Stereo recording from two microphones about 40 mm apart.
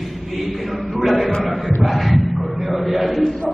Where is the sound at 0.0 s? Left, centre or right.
Centre.